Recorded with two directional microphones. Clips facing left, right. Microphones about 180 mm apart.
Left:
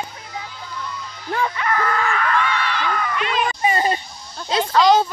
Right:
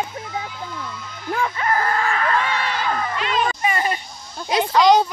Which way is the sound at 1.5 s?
35° right (ahead or behind).